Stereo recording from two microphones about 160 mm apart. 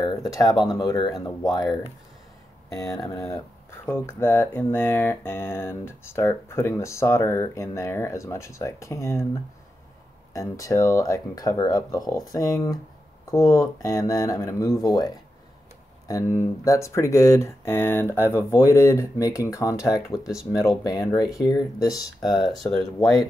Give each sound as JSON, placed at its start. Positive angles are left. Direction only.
{"t": 0.0, "sound": "speech", "side_deg": 25}
{"t": 2.9, "sound": "speech", "side_deg": 20}
{"t": 10.3, "sound": "speech", "side_deg": 20}
{"t": 16.1, "sound": "speech", "side_deg": 20}